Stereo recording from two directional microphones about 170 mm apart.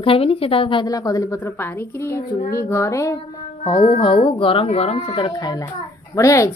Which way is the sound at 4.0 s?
30° left (ahead or behind).